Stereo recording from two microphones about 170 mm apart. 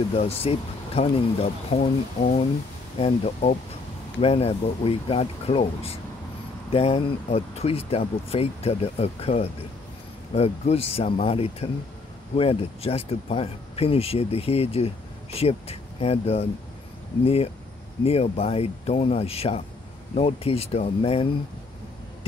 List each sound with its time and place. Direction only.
0.1 s speech: 35° left (ahead or behind)